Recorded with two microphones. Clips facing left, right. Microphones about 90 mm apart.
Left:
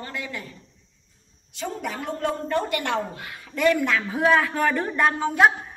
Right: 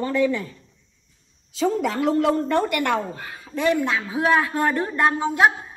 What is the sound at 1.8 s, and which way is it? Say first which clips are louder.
A woman's voice: right 5 dB; 90° right.